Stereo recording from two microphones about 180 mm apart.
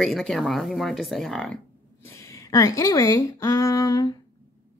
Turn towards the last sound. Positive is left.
turn(degrees=20)  # may be behind; listen again after turning